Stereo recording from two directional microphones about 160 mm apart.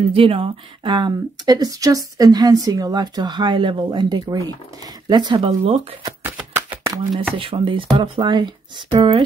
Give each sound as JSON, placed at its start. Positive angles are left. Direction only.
{"t": 0.1, "sound": "speech", "side_deg": -35}
{"t": 5.6, "sound": "speech", "side_deg": -40}
{"t": 6.3, "sound": "a sound", "side_deg": -10}
{"t": 7.3, "sound": "speech", "side_deg": -35}